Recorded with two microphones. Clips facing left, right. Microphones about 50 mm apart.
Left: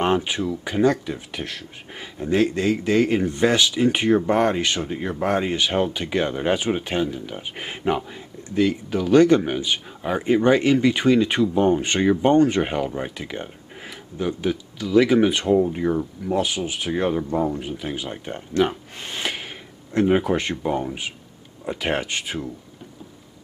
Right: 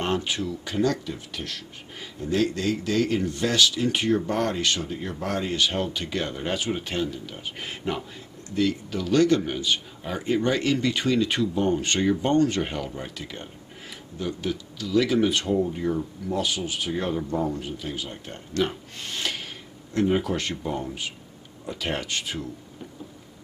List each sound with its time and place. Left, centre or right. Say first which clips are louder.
0.0 s speech: left 5 dB; left